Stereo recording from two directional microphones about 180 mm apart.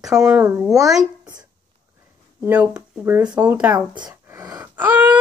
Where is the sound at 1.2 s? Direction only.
20° right (ahead or behind).